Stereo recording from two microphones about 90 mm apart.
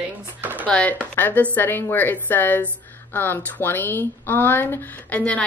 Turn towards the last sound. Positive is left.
turn(degrees=15)  # may be behind; listen again after turning